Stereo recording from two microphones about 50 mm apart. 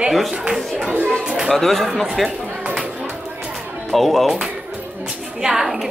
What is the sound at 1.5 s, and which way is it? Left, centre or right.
Speech, centre.